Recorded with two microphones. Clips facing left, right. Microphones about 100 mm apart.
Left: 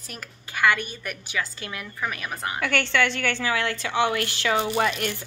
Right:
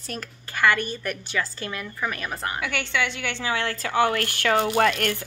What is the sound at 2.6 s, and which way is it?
A woman's voice, 10° right (ahead or behind).